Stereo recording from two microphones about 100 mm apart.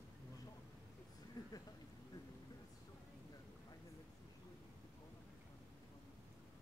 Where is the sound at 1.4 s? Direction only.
40° left (ahead or behind).